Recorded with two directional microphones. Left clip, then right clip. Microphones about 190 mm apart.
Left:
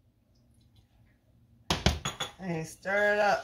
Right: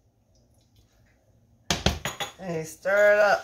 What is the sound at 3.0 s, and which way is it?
Speech, 20° right (ahead or behind).